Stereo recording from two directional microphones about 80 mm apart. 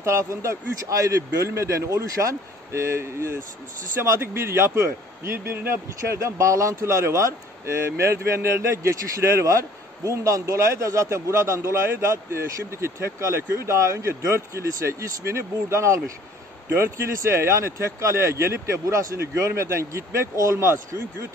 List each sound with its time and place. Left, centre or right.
0.0 s speech: right
6.2 s speech: right